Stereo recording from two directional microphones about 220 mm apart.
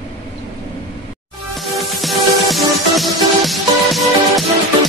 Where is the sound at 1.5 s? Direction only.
Centre (ahead or behind).